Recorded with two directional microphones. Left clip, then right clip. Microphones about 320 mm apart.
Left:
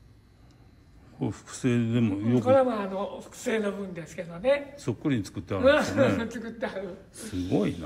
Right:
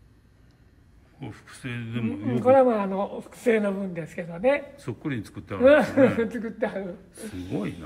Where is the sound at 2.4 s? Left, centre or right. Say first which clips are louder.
Right 5 dB; right.